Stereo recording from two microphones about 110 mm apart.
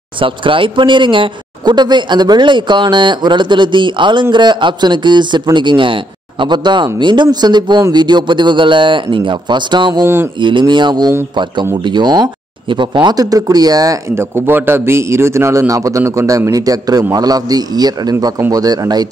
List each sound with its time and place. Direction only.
0.2 s speech: 50° right (ahead or behind); by 14.2 s 35° right (ahead or behind)
14.3 s a man's voice: 20° right (ahead or behind); by 19.0 s 35° right (ahead or behind)